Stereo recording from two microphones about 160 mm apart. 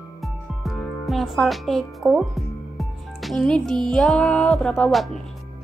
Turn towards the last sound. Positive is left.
turn(degrees=0)  # may be behind; listen again after turning